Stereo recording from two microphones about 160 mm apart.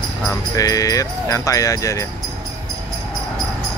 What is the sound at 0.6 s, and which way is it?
Speech, 20° left (ahead or behind).